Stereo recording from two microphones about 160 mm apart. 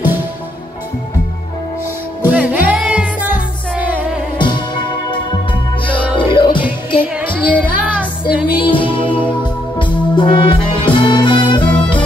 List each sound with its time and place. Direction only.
2.2 s music: 10° right (ahead or behind)
4.4 s music: 30° left (ahead or behind)
6.1 s music: 30° left (ahead or behind)
7.2 s music: 10° right (ahead or behind)
8.6 s music: 30° left (ahead or behind)